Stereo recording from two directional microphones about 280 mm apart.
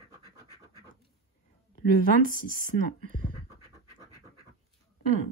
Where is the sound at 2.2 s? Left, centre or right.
Right.